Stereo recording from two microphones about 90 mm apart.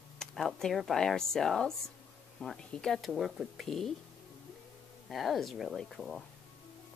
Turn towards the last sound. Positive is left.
turn(degrees=5)  # may be behind; listen again after turning